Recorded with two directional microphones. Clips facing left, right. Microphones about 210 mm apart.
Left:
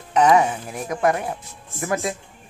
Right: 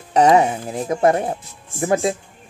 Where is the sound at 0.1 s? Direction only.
30° right (ahead or behind).